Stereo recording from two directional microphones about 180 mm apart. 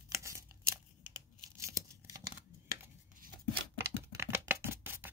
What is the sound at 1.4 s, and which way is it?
Tearing, 20° right (ahead or behind).